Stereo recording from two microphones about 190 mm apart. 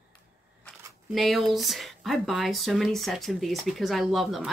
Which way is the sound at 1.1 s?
Centre (ahead or behind).